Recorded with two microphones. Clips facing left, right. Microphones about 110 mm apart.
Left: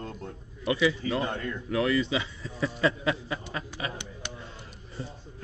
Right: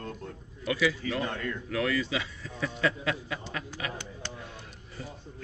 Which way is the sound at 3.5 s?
25° left (ahead or behind).